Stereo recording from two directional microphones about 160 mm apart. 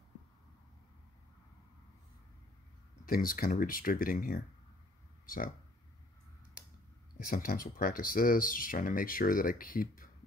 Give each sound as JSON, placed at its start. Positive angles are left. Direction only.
{"t": 3.1, "sound": "speech", "side_deg": 65}
{"t": 7.2, "sound": "speech", "side_deg": 60}